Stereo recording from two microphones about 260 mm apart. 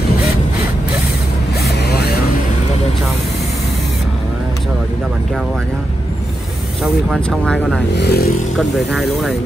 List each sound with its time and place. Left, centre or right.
6.8 s speech: centre
8.0 s speech: left
8.5 s speech: centre